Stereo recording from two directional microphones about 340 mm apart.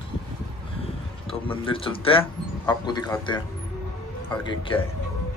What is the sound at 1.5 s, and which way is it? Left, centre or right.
Speech, centre.